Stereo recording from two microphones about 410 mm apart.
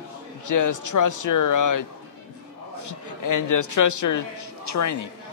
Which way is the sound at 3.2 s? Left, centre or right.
Left.